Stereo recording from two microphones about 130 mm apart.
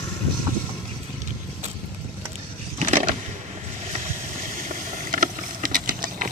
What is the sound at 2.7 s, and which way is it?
Vehicle, 65° right (ahead or behind).